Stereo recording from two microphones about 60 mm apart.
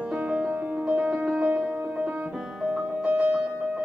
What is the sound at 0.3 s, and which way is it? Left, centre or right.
Music, centre.